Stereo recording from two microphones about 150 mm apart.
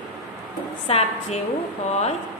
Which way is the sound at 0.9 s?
40° left (ahead or behind).